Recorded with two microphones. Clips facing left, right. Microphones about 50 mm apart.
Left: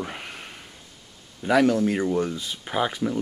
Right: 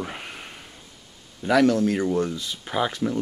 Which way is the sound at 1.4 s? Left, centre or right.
Centre.